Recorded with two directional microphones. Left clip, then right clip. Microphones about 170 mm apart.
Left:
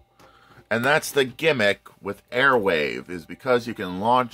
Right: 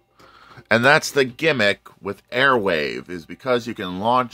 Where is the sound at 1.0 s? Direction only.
20° right (ahead or behind).